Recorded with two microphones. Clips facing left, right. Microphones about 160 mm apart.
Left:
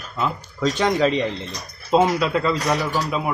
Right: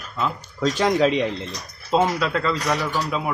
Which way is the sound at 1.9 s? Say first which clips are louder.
Left 3 dB; 10° left (ahead or behind).